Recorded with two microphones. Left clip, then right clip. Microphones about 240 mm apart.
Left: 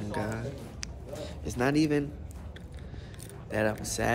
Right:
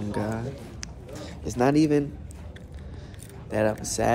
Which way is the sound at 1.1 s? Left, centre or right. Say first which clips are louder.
Right 3 dB; centre.